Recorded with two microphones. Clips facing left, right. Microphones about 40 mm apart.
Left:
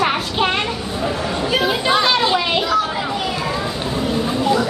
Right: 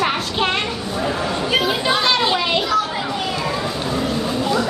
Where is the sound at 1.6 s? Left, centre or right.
Centre.